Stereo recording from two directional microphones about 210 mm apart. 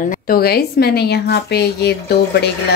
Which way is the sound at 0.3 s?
45° left (ahead or behind).